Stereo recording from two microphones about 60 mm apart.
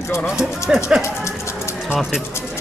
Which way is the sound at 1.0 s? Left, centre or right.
Left.